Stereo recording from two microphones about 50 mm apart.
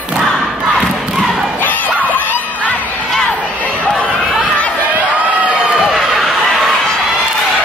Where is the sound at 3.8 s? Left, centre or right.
Left.